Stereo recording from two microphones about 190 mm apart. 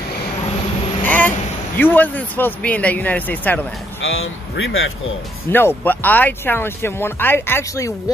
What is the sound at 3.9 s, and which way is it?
Speech, 90° left.